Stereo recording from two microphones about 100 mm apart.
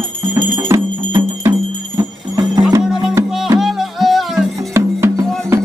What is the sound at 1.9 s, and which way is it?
Music, 35° right (ahead or behind).